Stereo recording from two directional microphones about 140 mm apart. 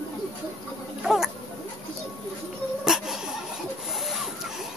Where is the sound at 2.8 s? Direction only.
5° right (ahead or behind).